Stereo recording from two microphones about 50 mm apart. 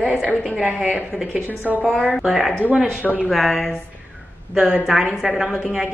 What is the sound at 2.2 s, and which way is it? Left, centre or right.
A woman's voice, centre.